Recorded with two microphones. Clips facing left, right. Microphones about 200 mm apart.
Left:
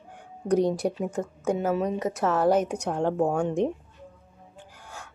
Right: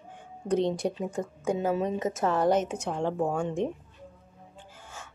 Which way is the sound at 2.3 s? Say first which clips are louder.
Left 3 dB; 10° left (ahead or behind).